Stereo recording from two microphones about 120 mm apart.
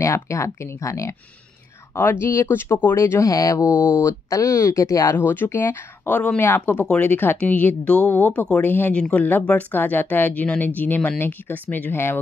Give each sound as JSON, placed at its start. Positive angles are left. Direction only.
{"t": 0.0, "sound": "speech", "side_deg": 25}